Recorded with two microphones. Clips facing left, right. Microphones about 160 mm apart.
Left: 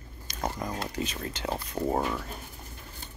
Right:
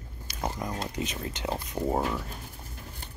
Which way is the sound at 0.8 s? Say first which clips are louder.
Even; 20° right (ahead or behind).